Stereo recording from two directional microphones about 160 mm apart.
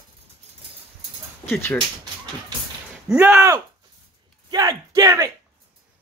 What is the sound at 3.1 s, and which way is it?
Speech, 10° right (ahead or behind).